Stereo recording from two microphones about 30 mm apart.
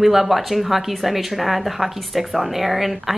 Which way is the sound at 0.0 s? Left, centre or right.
Centre.